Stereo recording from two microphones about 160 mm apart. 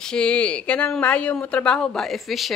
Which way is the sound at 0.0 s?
5° left (ahead or behind).